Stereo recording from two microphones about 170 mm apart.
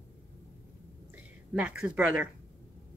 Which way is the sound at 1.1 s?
5° right (ahead or behind).